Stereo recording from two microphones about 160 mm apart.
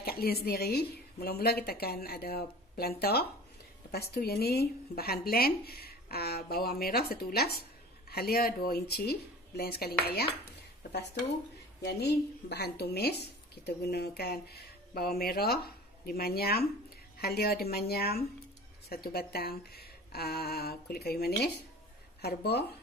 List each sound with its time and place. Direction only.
0.0 s a woman's voice: 75° left (ahead or behind)
11.8 s a woman's voice: 90° left